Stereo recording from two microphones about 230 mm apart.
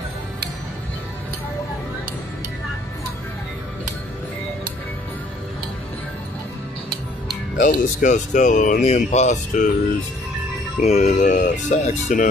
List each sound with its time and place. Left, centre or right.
7.5 s speech: left
10.8 s speech: left